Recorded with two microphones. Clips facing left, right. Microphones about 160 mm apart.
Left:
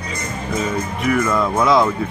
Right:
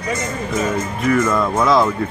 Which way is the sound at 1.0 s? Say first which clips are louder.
Right 1 dB; 5° left (ahead or behind).